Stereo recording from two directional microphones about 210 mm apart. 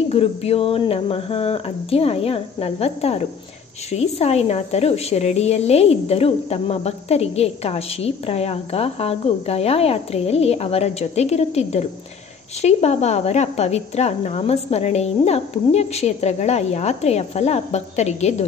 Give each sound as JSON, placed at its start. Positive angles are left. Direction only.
{"t": 0.1, "sound": "a woman's voice", "side_deg": 30}